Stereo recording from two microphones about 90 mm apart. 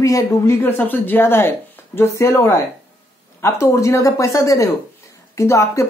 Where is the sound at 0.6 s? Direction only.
25° left (ahead or behind).